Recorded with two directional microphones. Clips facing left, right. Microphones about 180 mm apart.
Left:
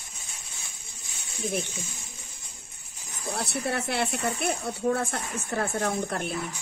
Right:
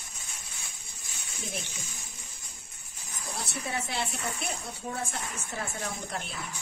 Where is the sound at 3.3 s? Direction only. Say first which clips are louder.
Left 6 dB; 65° left (ahead or behind).